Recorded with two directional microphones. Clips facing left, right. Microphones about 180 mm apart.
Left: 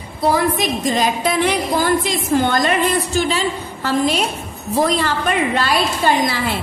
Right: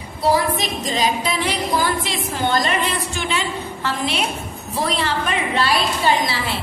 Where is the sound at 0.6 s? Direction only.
50° left (ahead or behind).